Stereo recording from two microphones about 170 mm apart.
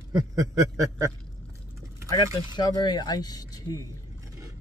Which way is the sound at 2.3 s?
25° left (ahead or behind).